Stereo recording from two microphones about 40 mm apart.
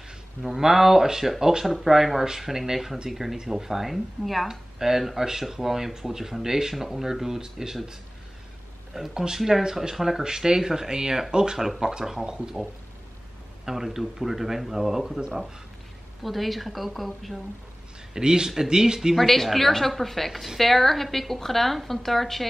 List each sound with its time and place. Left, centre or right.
0.4 s speech: centre
9.1 s speech: centre
13.7 s speech: centre
16.2 s a woman's voice: centre
18.1 s speech: centre
19.1 s a woman's voice: centre